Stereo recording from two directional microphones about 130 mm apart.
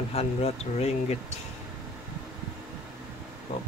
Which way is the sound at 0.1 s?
50° left (ahead or behind).